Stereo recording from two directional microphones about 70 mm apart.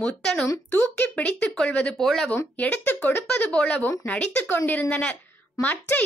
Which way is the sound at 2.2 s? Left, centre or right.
Left.